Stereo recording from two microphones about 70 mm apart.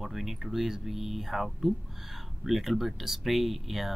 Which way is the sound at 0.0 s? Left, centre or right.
Centre.